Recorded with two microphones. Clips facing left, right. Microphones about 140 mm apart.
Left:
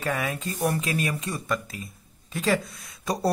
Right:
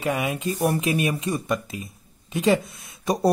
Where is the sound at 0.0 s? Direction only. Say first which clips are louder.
Right 4 dB; 20° right (ahead or behind).